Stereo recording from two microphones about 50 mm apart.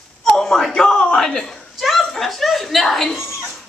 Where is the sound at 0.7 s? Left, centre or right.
Centre.